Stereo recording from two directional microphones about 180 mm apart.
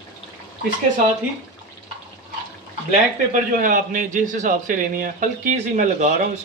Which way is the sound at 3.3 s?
50° right (ahead or behind).